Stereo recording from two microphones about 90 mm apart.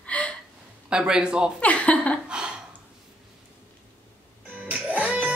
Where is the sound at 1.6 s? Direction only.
15° left (ahead or behind).